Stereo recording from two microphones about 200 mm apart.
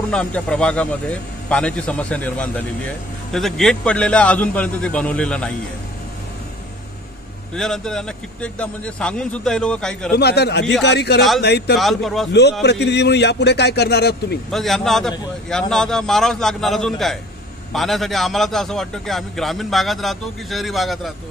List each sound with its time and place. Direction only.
0.1 s a man's voice: 5° left (ahead or behind)
7.5 s a man's voice: 5° left (ahead or behind)
10.1 s a man's voice: 55° left (ahead or behind)
11.7 s a man's voice: centre (ahead or behind)
12.3 s a man's voice: 55° left (ahead or behind)
14.5 s a man's voice: centre (ahead or behind)